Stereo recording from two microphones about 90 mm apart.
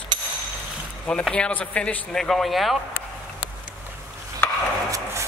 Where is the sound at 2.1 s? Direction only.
5° left (ahead or behind).